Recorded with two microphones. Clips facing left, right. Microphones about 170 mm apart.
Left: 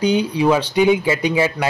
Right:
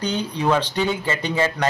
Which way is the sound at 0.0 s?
10° left (ahead or behind).